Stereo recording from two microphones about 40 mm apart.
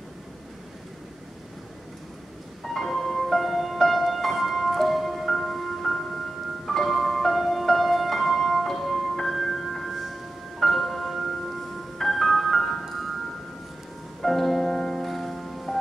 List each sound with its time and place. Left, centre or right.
2.6 s music: centre
14.2 s music: centre